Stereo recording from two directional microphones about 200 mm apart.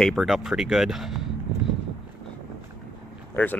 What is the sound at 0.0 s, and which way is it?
Speech, centre (ahead or behind).